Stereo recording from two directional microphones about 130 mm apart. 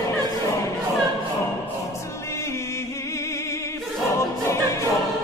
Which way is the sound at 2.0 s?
20° left (ahead or behind).